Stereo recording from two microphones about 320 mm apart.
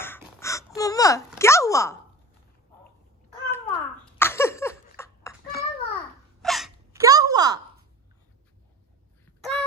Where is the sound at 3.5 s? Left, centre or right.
Centre.